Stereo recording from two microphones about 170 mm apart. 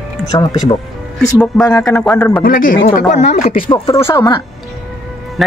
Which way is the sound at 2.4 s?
55° left (ahead or behind).